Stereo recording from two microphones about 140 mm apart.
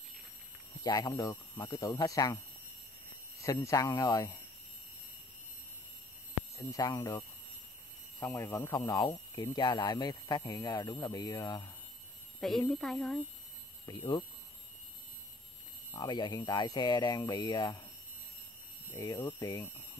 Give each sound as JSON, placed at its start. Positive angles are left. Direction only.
{"t": 0.8, "sound": "speech", "side_deg": 25}
{"t": 3.4, "sound": "speech", "side_deg": 20}
{"t": 6.7, "sound": "speech", "side_deg": 25}
{"t": 8.2, "sound": "speech", "side_deg": 15}
{"t": 12.4, "sound": "a woman's voice", "side_deg": 0}
{"t": 13.8, "sound": "speech", "side_deg": 30}
{"t": 15.9, "sound": "speech", "side_deg": 30}
{"t": 18.9, "sound": "speech", "side_deg": 25}